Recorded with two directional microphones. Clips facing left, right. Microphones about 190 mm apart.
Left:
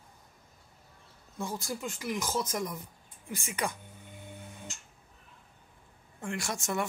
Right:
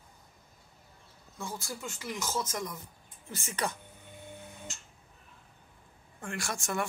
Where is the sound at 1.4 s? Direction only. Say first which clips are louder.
Left 4 dB; 15° left (ahead or behind).